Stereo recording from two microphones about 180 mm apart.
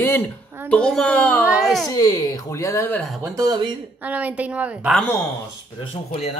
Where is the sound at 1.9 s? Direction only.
20° left (ahead or behind); by 3.2 s 5° left (ahead or behind).